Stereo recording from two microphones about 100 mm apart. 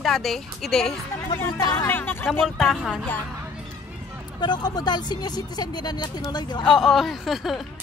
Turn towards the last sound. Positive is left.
turn(degrees=0)  # may be behind; listen again after turning